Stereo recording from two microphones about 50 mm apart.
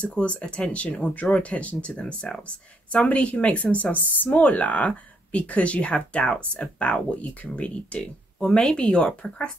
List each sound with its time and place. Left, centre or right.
0.0 s speech: left
8.5 s speech: centre